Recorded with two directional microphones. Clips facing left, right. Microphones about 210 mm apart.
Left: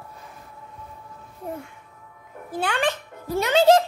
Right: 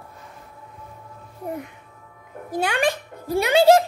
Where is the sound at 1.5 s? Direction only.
15° right (ahead or behind).